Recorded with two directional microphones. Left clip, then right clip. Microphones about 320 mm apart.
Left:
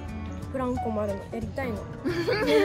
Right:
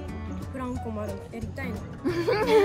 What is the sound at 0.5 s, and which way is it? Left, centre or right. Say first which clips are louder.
Speech: left 6 dB; centre.